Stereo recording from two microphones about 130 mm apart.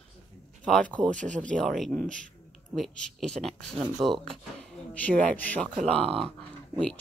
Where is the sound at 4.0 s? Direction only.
25° right (ahead or behind).